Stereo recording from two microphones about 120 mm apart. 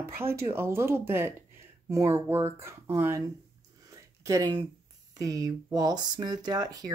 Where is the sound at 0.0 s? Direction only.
20° right (ahead or behind).